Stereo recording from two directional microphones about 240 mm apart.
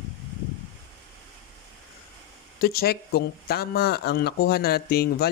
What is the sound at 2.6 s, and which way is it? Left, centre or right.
Speech, left.